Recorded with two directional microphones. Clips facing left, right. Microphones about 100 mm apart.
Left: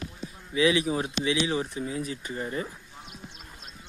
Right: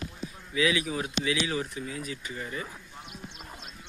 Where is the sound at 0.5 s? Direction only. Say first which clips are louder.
Left 4 dB; 25° left (ahead or behind).